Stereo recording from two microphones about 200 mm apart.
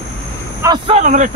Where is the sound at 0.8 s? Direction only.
35° right (ahead or behind).